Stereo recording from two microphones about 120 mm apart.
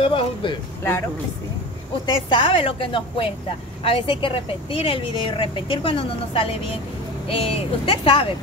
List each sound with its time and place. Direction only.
0.0 s speech: 45° left (ahead or behind)
2.0 s speech: 40° left (ahead or behind)